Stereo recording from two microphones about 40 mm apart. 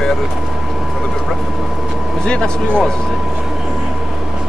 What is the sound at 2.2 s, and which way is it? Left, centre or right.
Speech, centre.